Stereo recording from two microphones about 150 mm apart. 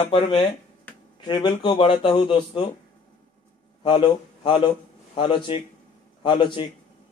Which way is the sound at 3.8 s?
35° left (ahead or behind).